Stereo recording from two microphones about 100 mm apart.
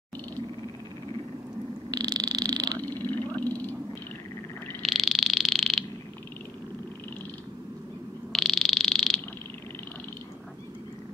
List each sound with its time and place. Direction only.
1.9 s frog: 40° right (ahead or behind)
2.8 s vehicle: 20° left (ahead or behind)
4.8 s frog: centre (ahead or behind)
8.3 s frog: centre (ahead or behind)